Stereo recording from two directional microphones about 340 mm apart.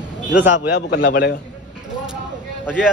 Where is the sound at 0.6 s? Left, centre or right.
Left.